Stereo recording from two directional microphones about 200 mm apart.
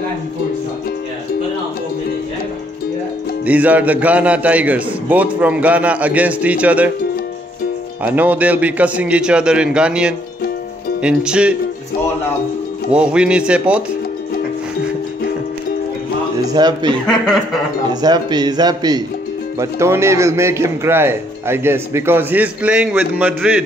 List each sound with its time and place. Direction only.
3.4 s speech: 10° right (ahead or behind)
8.0 s speech: 10° right (ahead or behind)
12.9 s speech: 5° right (ahead or behind)
16.4 s a man's voice: 20° right (ahead or behind)
18.0 s speech: 20° right (ahead or behind)